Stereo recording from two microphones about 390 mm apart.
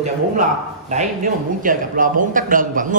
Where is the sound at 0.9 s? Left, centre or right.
Centre.